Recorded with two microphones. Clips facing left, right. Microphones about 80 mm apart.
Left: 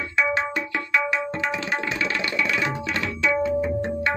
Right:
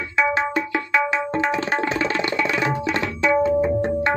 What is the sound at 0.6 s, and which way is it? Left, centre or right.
Tabla, right.